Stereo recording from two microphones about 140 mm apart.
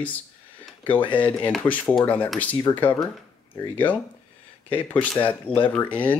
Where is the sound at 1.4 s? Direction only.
5° left (ahead or behind).